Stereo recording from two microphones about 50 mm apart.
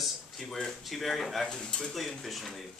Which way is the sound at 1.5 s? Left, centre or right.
Centre.